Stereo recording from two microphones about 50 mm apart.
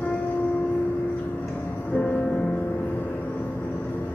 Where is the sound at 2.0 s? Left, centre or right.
Centre.